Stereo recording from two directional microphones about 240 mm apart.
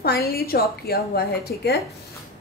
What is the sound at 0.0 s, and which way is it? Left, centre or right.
A woman's voice, left.